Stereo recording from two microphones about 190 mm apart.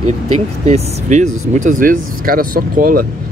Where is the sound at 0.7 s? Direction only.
35° right (ahead or behind).